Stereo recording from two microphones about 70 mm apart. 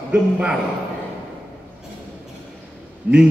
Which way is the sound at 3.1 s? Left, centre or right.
Right.